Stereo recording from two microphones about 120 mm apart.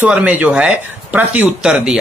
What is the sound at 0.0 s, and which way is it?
Speech, 10° right (ahead or behind).